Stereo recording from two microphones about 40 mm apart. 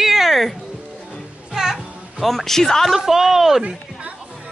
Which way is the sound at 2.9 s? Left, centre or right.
Centre.